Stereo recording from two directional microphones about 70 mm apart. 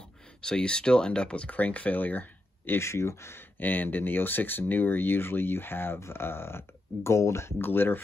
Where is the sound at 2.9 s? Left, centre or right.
Left.